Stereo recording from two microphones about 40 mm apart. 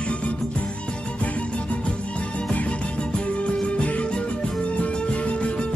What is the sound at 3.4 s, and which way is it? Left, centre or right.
Music, left.